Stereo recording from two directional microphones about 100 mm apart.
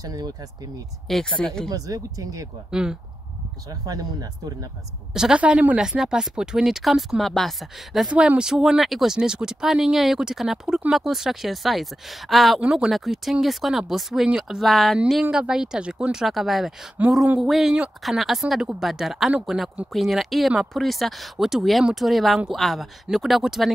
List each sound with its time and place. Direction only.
0.0 s speech: 40° right (ahead or behind)
1.1 s speech: 5° left (ahead or behind)
1.7 s speech: 35° right (ahead or behind)
2.7 s speech: 10° right (ahead or behind)
3.8 s speech: 40° right (ahead or behind)
5.1 s speech: 10° right (ahead or behind)
8.1 s speech: 10° right (ahead or behind)
17.0 s speech: 15° right (ahead or behind)
17.4 s speech: centre (ahead or behind)